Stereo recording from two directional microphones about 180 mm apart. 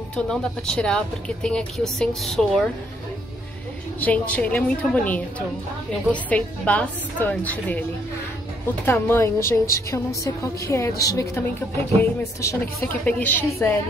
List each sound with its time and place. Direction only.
0.1 s speech: 5° left (ahead or behind)
4.0 s a woman's voice: 10° left (ahead or behind)
6.2 s a woman's voice: 5° left (ahead or behind)
8.8 s a woman's voice: 10° left (ahead or behind)